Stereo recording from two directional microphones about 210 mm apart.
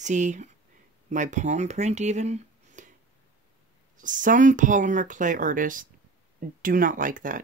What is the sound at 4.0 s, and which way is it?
Speech, 40° right (ahead or behind).